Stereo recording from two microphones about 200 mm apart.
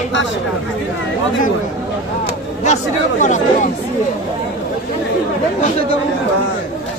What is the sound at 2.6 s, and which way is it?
Speech, 35° left (ahead or behind).